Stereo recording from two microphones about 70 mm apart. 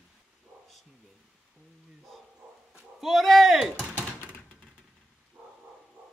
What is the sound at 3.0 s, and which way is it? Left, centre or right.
Speech, centre.